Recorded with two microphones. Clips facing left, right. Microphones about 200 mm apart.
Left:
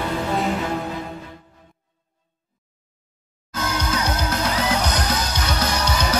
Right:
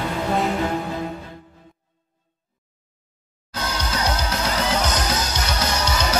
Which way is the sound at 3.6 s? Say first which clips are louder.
Left 2 dB; 50° left (ahead or behind).